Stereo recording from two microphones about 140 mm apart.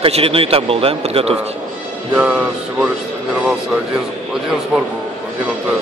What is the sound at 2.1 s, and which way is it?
Music, 10° right (ahead or behind).